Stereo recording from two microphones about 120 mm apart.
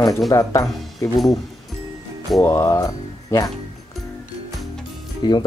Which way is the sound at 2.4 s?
25° left (ahead or behind).